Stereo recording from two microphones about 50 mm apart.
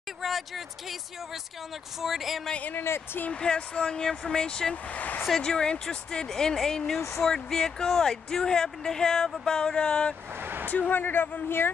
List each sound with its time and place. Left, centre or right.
0.2 s a sound: centre
2.0 s speech: centre
2.7 s speech: left
3.3 s speech: centre
4.9 s speech: left
5.4 s speech: centre
10.4 s a sound: right
10.9 s speech: left